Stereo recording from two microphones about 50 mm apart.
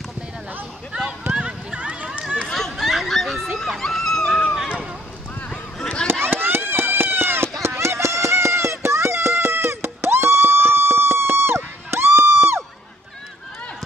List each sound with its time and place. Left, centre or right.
1.3 s run: right
2.4 s chatter: centre
2.8 s a sound: centre
5.5 s a sound: centre
6.2 s run: right
7.6 s music: right